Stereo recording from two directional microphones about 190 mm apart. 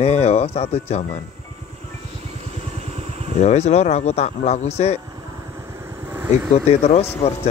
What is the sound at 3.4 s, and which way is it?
Speech, 35° left (ahead or behind).